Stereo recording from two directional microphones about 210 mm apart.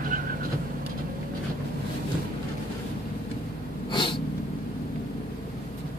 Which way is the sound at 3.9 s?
25° left (ahead or behind).